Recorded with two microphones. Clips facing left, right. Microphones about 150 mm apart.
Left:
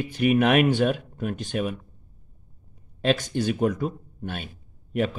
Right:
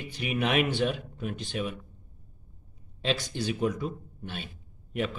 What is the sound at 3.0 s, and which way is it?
A man's voice, 50° left (ahead or behind).